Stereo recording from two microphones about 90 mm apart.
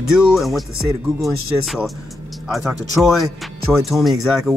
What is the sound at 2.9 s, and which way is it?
Speech, centre (ahead or behind).